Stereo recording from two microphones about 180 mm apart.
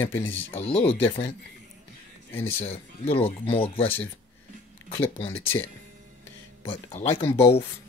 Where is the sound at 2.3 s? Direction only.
35° left (ahead or behind).